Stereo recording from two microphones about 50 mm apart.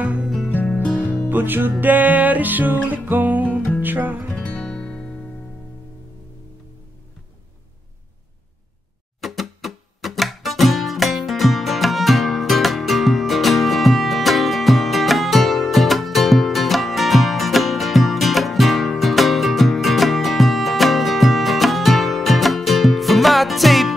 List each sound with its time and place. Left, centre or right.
0.0 s music: right
1.3 s music: right
4.3 s music: left
9.2 s music: centre